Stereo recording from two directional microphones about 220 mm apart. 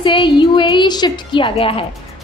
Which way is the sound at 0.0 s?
20° left (ahead or behind).